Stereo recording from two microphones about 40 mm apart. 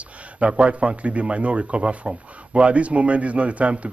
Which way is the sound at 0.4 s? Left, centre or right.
Right.